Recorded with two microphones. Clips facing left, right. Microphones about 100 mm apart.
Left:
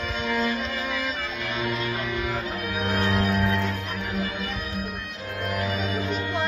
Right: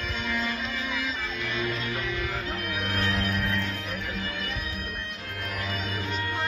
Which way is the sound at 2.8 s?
30° left (ahead or behind).